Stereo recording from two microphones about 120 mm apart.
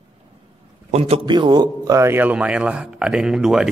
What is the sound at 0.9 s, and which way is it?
Speech, 60° right (ahead or behind).